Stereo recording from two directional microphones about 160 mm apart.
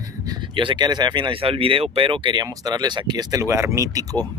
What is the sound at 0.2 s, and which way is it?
Speech, 25° right (ahead or behind).